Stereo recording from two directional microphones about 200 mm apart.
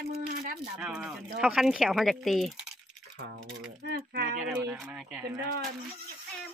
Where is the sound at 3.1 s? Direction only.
60° right (ahead or behind).